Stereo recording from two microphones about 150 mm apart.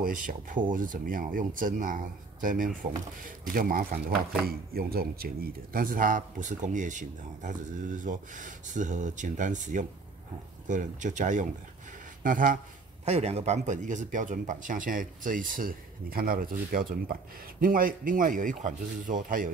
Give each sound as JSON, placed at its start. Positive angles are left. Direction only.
{"t": 0.0, "sound": "speech", "side_deg": -65}
{"t": 4.5, "sound": "speech", "side_deg": -90}
{"t": 13.0, "sound": "speech", "side_deg": -45}